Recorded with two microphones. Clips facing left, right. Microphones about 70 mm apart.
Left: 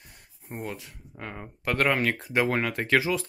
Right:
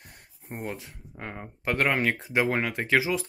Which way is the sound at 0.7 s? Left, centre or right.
Right.